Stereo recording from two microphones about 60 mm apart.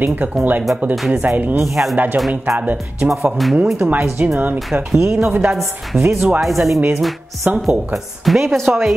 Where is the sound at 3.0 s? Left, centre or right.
Centre.